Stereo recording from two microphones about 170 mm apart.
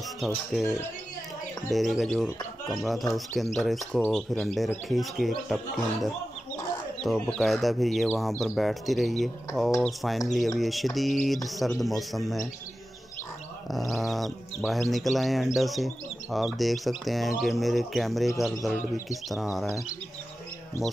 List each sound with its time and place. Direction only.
0.2 s speech: centre (ahead or behind)
1.7 s speech: centre (ahead or behind)
7.0 s speech: centre (ahead or behind)
13.7 s speech: centre (ahead or behind)